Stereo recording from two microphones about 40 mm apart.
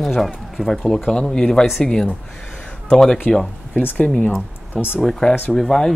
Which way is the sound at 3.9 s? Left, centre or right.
Left.